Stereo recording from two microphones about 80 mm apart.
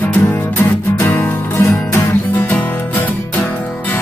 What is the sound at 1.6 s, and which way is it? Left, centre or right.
Music, left.